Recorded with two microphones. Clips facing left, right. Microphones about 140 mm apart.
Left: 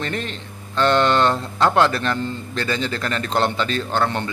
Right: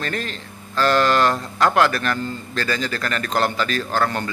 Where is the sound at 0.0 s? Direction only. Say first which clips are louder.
Left 1 dB; 20° left (ahead or behind).